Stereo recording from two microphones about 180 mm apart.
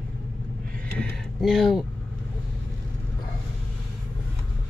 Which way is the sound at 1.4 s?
Centre (ahead or behind).